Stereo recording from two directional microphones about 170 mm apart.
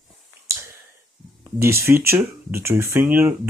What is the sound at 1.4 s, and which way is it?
Speech, 15° right (ahead or behind).